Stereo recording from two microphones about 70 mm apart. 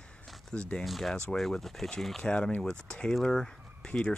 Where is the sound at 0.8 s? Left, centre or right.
Centre.